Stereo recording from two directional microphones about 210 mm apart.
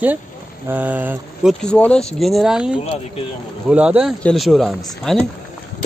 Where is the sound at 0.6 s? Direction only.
10° right (ahead or behind).